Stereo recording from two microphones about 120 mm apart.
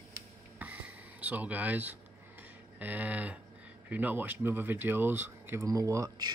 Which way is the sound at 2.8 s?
15° right (ahead or behind).